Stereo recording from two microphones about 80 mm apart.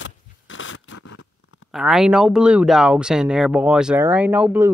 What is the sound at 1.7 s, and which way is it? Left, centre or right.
Speech, centre.